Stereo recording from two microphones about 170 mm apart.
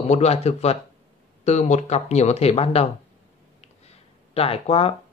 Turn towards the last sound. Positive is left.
turn(degrees=35)  # may be behind; listen again after turning